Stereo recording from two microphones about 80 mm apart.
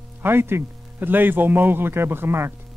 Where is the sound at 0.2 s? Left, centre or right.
Right.